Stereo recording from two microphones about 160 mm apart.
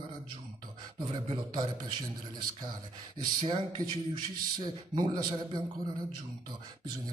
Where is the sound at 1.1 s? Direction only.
30° right (ahead or behind).